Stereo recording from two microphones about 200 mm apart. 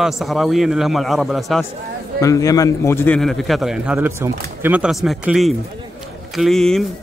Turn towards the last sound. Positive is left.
turn(degrees=0)  # may be behind; listen again after turning